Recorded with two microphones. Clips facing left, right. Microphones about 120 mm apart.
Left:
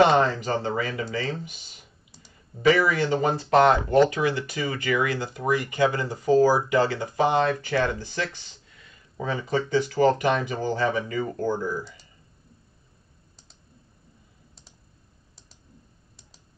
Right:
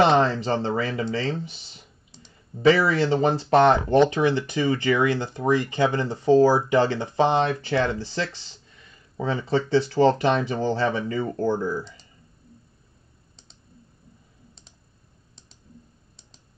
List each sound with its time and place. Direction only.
0.0 s speech: 25° right (ahead or behind)
1.5 s clicking: 30° right (ahead or behind)
2.6 s speech: 30° right (ahead or behind)